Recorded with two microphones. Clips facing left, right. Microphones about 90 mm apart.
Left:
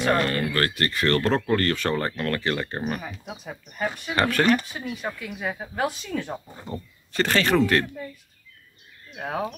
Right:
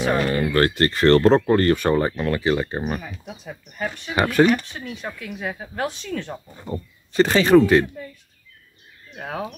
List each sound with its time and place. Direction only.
0.0 s speech: 5° right (ahead or behind)
0.5 s speech: 25° right (ahead or behind)
0.8 s speech: 35° right (ahead or behind); by 3.0 s 10° right (ahead or behind)
3.3 s speech: 5° left (ahead or behind)
4.1 s speech: 15° right (ahead or behind)
4.6 s speech: 5° left (ahead or behind)
6.6 s speech: 10° right (ahead or behind)
9.1 s speech: 5° left (ahead or behind)